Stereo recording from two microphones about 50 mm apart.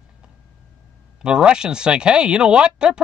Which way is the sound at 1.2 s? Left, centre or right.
Centre.